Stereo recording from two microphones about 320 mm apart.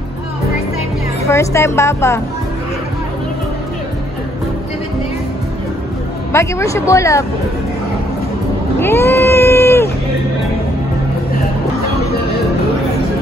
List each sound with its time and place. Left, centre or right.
1.2 s speech: centre
6.3 s speech: centre
8.7 s cat: centre